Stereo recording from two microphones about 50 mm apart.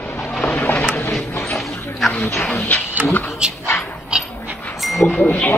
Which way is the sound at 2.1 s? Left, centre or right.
Left.